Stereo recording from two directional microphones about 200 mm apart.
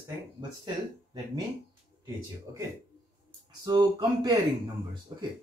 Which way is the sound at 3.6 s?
20° right (ahead or behind).